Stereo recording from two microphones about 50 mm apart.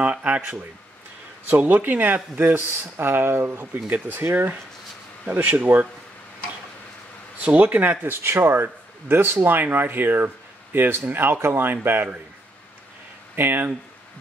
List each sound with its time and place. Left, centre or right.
0.0 s speech: right
2.5 s speech: right
3.8 s speech: right
4.2 s speech: right
7.4 s speech: right
8.2 s speech: right
13.4 s speech: right